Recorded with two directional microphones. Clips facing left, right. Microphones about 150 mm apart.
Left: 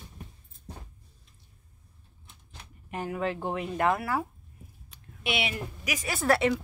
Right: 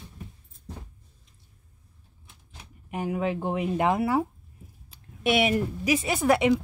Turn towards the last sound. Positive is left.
turn(degrees=-15)  # may be behind; listen again after turning